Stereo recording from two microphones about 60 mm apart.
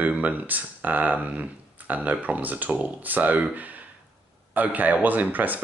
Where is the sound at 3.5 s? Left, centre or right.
Right.